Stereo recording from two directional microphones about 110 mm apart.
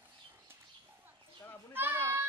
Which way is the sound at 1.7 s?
20° right (ahead or behind).